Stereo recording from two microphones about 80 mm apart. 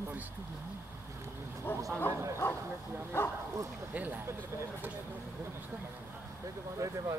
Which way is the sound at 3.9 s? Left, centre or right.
Right.